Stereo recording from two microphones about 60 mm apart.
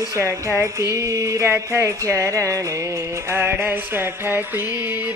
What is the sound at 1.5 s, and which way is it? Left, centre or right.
Speech, right.